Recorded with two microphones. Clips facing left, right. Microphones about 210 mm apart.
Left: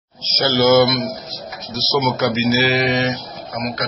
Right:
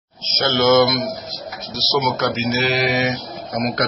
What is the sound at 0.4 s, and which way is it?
A man's voice, 5° left (ahead or behind).